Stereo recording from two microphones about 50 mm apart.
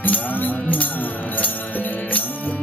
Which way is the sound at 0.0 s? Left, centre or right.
Left.